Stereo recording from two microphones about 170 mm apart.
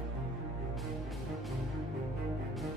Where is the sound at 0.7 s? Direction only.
Centre (ahead or behind).